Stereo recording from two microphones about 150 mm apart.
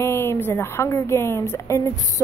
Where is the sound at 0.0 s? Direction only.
15° left (ahead or behind).